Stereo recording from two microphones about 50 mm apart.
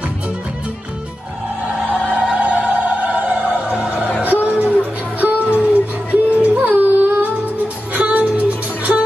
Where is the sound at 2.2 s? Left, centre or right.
Right.